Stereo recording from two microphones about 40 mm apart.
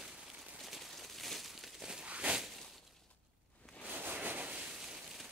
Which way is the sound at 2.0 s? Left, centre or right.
Right.